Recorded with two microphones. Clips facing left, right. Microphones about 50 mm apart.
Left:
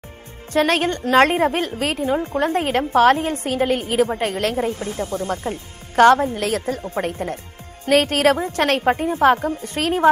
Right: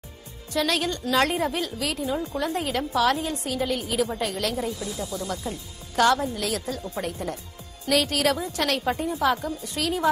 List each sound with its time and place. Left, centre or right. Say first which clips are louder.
0.5 s a woman's voice: left 7 dB; left